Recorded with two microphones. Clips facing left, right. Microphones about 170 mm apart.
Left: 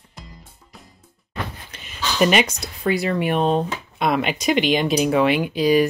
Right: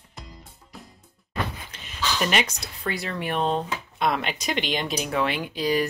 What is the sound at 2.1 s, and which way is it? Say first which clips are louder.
Speech: left 9 dB; 15° left (ahead or behind).